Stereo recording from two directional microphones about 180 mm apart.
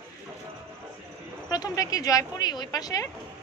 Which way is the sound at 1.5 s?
20° left (ahead or behind).